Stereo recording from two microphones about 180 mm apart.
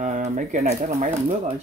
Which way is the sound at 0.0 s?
45° right (ahead or behind).